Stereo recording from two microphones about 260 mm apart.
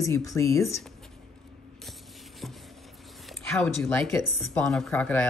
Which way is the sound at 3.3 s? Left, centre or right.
Centre.